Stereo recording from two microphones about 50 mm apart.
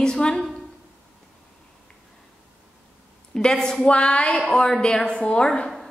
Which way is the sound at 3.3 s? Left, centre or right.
Centre.